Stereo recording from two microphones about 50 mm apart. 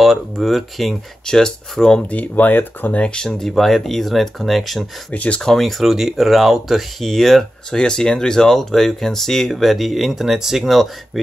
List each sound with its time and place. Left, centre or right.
0.0 s speech: centre
1.2 s speech: centre
2.0 s speech: left
3.0 s speech: centre
5.1 s speech: left
5.4 s speech: centre
7.7 s speech: centre